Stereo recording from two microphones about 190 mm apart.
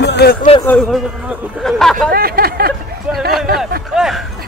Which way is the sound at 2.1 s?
50° right (ahead or behind).